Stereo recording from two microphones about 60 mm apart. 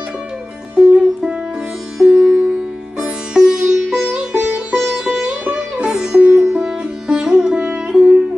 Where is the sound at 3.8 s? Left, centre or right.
Centre.